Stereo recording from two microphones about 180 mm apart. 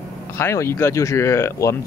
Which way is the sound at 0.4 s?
15° left (ahead or behind).